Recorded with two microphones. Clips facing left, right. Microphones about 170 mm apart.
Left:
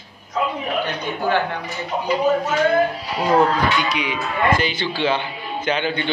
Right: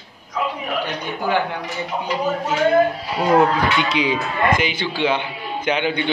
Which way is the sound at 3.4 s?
25° right (ahead or behind).